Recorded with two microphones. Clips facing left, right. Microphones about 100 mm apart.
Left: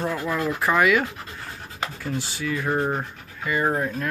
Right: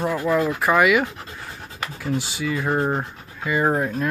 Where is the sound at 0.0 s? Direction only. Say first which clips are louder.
Right 5 dB; 15° right (ahead or behind).